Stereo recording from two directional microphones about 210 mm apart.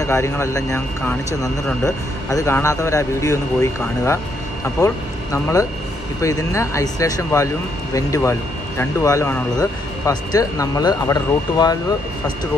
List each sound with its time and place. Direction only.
0.0 s speech: 15° left (ahead or behind)